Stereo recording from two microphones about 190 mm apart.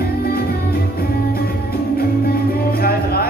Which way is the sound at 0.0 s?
55° left (ahead or behind).